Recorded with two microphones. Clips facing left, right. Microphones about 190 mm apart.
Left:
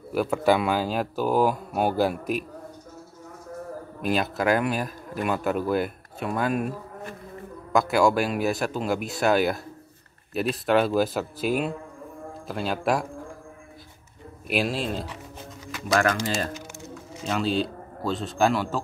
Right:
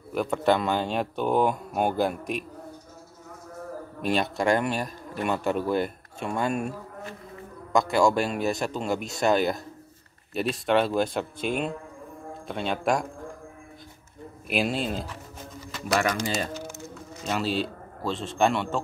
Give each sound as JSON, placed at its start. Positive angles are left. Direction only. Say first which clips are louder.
{"t": 0.1, "sound": "a man's voice", "louder": "left 2 dB", "side_deg": 5}
{"t": 4.0, "sound": "a man's voice", "louder": "even", "side_deg": 5}
{"t": 7.7, "sound": "a man's voice", "louder": "left 1 dB", "side_deg": 5}
{"t": 14.5, "sound": "a man's voice", "louder": "left 1 dB", "side_deg": 0}